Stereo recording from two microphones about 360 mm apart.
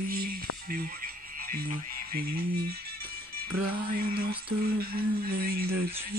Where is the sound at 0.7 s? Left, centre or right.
Right.